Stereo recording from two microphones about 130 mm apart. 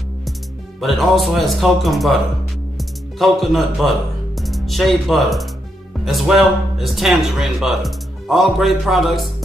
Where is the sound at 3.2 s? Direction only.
Centre (ahead or behind).